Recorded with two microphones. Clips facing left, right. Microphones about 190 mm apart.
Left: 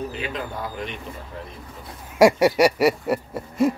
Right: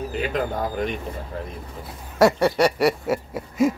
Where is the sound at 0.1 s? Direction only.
45° right (ahead or behind).